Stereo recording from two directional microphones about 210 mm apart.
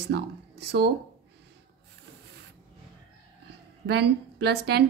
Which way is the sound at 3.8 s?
50° right (ahead or behind).